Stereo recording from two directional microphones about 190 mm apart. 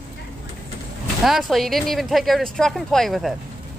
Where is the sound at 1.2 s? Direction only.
Centre (ahead or behind).